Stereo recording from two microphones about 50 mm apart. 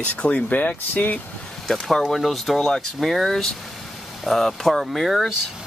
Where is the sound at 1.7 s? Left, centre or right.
Centre.